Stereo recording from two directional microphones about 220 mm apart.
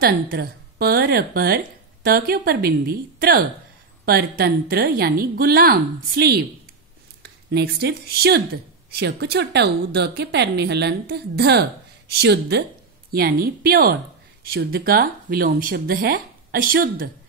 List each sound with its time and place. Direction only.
0.0 s speech: 45° right (ahead or behind)